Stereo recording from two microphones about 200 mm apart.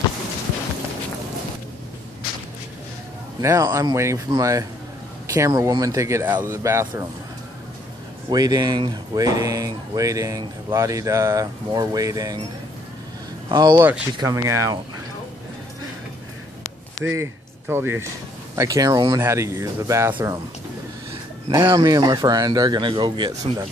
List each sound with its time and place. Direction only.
3.3 s speech: 15° right (ahead or behind)
8.3 s speech: 20° right (ahead or behind)
13.5 s speech: 20° right (ahead or behind)
17.1 s speech: 15° right (ahead or behind)
21.5 s speech: 20° right (ahead or behind)